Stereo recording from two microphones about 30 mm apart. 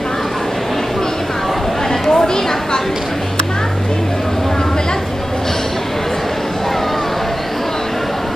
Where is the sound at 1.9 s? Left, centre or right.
Centre.